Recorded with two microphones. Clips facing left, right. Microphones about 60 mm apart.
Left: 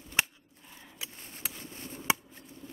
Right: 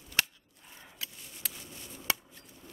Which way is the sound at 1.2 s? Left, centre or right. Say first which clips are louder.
Left 3 dB; left.